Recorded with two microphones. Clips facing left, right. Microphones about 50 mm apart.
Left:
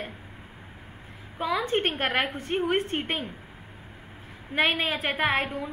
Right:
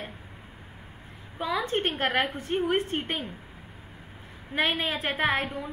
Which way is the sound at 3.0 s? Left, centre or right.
Left.